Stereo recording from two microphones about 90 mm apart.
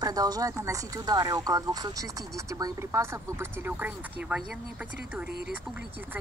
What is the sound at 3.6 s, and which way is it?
Speech, 20° right (ahead or behind).